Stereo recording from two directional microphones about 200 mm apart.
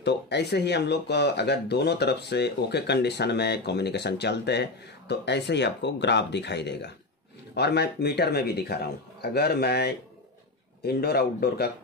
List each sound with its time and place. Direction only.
0.0 s a man's voice: 60° left (ahead or behind)